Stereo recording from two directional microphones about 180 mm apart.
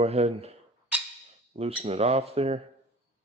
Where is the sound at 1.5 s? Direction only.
35° right (ahead or behind).